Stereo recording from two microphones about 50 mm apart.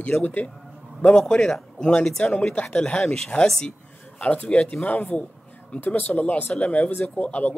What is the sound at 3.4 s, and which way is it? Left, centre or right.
Speech, centre.